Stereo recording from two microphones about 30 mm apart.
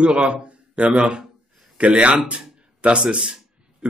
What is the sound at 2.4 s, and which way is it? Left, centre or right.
Music, right.